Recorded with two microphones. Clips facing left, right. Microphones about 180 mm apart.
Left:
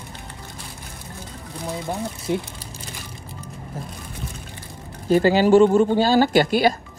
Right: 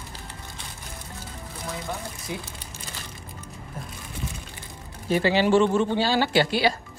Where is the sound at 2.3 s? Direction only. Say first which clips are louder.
Left 10 dB; 60° left (ahead or behind).